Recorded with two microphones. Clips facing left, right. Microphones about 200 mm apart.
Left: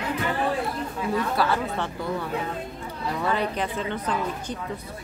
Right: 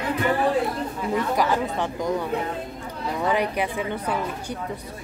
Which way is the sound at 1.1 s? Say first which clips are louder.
Right 2 dB; 15° right (ahead or behind).